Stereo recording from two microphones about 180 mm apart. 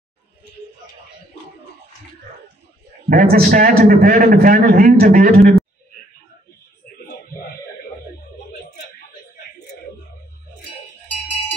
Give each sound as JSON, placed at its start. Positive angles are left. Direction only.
{"t": 3.1, "sound": "a man's voice", "side_deg": -50}